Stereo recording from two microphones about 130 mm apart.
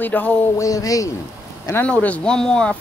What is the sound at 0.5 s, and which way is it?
Speech, 25° left (ahead or behind).